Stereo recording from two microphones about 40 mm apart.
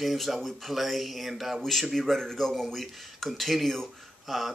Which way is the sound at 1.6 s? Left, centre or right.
Centre.